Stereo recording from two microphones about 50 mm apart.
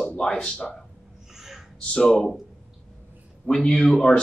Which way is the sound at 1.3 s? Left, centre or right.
Centre.